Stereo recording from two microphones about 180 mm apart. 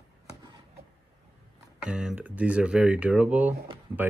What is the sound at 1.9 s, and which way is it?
Speech, 5° right (ahead or behind).